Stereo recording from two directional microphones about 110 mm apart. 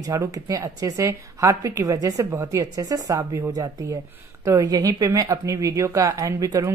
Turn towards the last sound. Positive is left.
turn(degrees=-30)  # may be behind; listen again after turning